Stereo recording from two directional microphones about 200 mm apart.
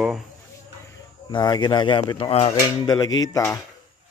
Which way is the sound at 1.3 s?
20° left (ahead or behind).